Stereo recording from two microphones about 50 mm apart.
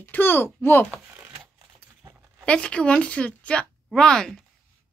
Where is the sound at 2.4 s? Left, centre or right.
Centre.